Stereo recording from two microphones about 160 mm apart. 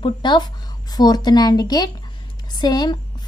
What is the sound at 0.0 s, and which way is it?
A woman's voice, 30° left (ahead or behind).